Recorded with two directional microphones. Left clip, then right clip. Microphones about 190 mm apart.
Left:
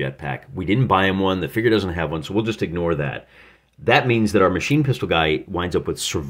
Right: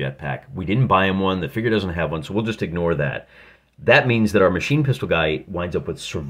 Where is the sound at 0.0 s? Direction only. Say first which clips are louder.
Left 1 dB; 10° left (ahead or behind).